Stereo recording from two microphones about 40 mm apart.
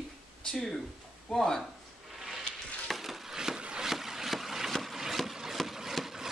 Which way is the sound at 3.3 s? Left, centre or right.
Centre.